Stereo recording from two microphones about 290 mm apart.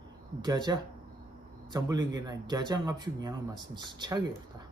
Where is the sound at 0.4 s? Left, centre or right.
Centre.